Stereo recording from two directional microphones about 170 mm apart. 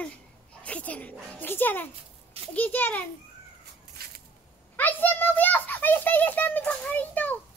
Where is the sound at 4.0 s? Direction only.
65° right (ahead or behind).